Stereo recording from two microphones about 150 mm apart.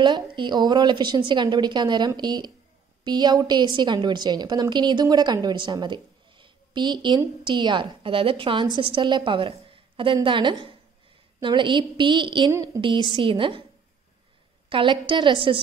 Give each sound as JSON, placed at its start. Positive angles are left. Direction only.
{"t": 0.0, "sound": "a woman's voice", "side_deg": -30}
{"t": 14.7, "sound": "a woman's voice", "side_deg": -35}